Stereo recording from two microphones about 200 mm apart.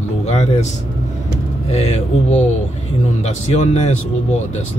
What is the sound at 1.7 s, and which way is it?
Speech, 35° left (ahead or behind).